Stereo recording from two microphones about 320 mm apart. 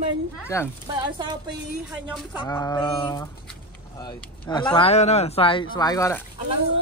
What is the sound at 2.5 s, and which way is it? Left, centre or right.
Speech, centre.